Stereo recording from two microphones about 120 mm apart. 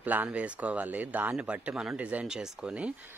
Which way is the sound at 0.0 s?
15° right (ahead or behind).